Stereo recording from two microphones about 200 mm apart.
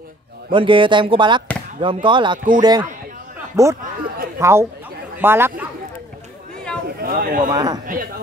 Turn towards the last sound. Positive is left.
turn(degrees=-20)  # may be behind; listen again after turning